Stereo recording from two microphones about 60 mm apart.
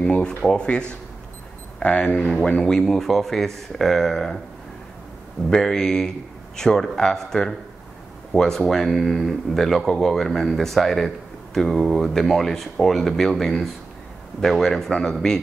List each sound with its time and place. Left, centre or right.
0.5 s speech: centre
5.5 s speech: centre